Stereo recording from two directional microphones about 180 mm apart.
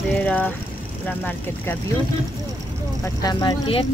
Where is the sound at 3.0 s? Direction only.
20° left (ahead or behind).